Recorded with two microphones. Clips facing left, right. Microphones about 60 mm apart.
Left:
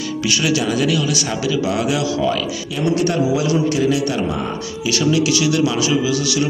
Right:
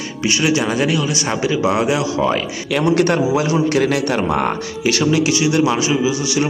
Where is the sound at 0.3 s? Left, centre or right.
Right.